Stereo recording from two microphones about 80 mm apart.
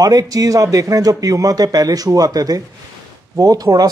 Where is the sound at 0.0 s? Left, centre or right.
Right.